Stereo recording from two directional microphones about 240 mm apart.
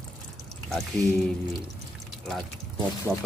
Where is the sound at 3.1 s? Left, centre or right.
Centre.